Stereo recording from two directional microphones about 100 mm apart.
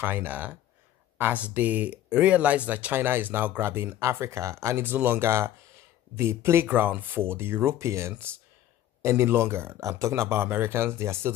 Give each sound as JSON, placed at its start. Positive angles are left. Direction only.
{"t": 0.0, "sound": "speech", "side_deg": -20}